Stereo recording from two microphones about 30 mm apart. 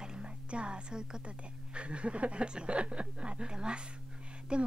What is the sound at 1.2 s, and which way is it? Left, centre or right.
A woman's voice, right.